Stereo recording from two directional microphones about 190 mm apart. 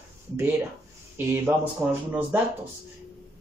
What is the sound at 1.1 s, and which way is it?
Speech, 10° right (ahead or behind).